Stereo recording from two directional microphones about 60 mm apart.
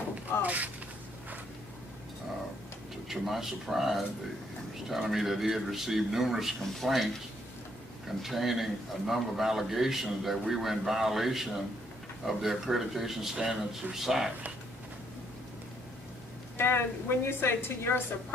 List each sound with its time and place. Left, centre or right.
0.1 s a sound: right
3.1 s a man's voice: centre
8.2 s a man's voice: centre
16.5 s a woman's voice: left